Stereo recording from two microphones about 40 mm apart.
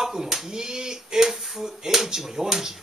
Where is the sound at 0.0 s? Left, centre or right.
Centre.